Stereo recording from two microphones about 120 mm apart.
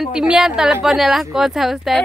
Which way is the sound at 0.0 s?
5° right (ahead or behind).